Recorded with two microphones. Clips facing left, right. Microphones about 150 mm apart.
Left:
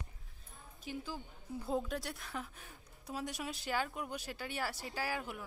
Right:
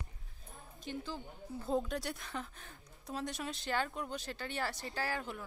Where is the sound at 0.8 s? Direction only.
5° left (ahead or behind).